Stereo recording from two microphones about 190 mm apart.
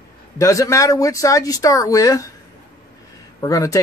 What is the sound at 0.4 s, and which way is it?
Speech, 15° left (ahead or behind).